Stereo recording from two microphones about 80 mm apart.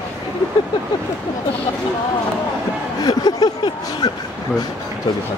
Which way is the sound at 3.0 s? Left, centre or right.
Left.